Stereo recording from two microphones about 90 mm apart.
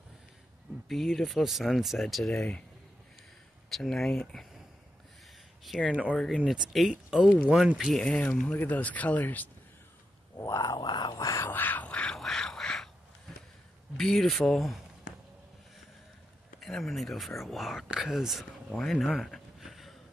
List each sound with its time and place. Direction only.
0.8 s speech: centre (ahead or behind)
3.7 s speech: centre (ahead or behind)
5.7 s speech: centre (ahead or behind)
8.0 s speech: 15° left (ahead or behind)
10.3 s speech: 35° left (ahead or behind)
10.8 s speech: 55° left (ahead or behind); by 11.5 s 35° left (ahead or behind)
11.5 s a sound: 20° left (ahead or behind)
12.2 s quack: 5° left (ahead or behind)
13.9 s speech: 5° left (ahead or behind)
16.5 s speech: centre (ahead or behind)
18.8 s a sound: 5° left (ahead or behind)